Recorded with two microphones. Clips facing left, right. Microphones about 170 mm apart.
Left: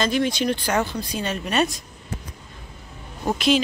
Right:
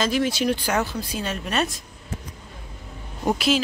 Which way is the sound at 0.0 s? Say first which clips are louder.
Even; 5° right (ahead or behind).